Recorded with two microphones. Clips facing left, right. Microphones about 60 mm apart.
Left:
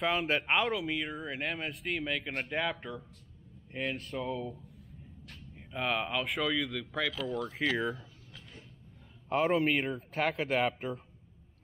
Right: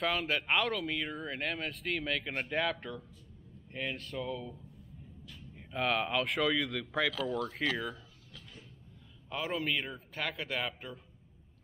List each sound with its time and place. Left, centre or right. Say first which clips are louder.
0.1 s speech: left 2 dB; left
0.7 s speech: left 1 dB; centre
3.9 s speech: left 2 dB; left
5.5 s speech: right 1 dB; centre
7.5 s speech: left 2 dB; centre
9.3 s speech: left 7 dB; left